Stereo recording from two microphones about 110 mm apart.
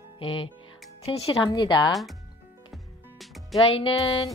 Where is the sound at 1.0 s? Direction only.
70° left (ahead or behind).